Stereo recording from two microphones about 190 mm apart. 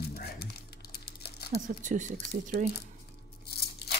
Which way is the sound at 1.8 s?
40° right (ahead or behind).